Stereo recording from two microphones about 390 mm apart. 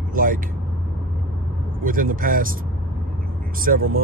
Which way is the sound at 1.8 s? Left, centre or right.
Right.